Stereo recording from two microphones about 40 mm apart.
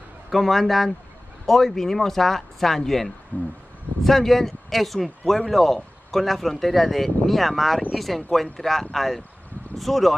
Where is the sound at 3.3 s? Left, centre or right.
Left.